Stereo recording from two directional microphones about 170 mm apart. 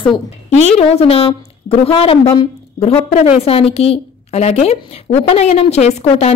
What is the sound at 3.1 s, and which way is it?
A woman's voice, 40° left (ahead or behind).